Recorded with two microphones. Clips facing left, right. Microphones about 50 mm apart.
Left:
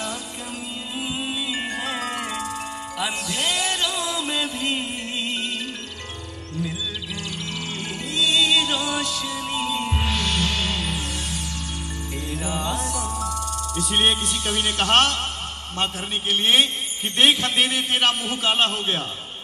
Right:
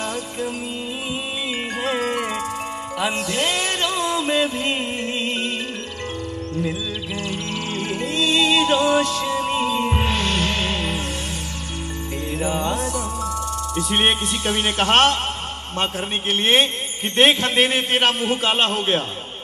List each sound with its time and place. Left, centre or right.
1.8 s music: right
7.2 s music: right
12.3 s music: right
15.8 s a man's voice: right